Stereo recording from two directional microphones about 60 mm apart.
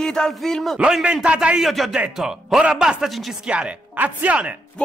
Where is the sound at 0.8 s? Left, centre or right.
Centre.